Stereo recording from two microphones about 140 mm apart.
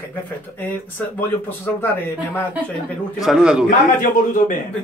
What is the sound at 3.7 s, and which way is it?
Speech, 80° left.